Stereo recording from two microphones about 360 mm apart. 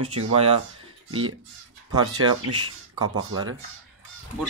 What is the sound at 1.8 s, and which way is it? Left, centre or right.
Speech, right.